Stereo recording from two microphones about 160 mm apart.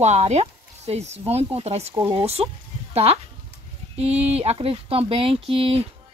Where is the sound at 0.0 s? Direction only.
45° right (ahead or behind).